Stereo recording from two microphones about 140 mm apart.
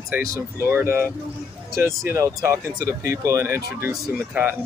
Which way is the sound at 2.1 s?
20° right (ahead or behind).